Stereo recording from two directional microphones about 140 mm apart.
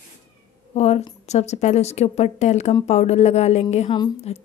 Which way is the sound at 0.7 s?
50° left (ahead or behind).